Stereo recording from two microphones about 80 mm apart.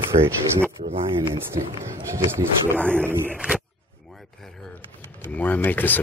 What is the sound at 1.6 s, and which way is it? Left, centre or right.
Speech, right.